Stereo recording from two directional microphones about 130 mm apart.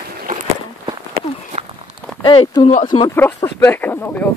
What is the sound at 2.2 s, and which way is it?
Speech, 40° left (ahead or behind).